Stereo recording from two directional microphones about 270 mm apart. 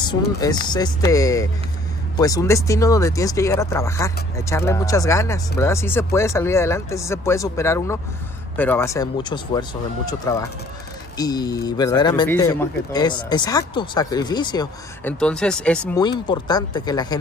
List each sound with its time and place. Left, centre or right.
0.0 s speech: centre
15.1 s speech: centre
16.0 s speech: centre